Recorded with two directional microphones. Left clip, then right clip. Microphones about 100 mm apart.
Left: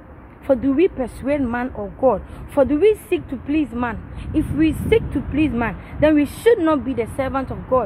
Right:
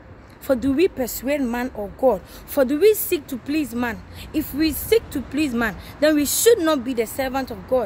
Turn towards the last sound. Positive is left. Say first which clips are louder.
# left 2 dB
turn(degrees=-35)  # may be behind; listen again after turning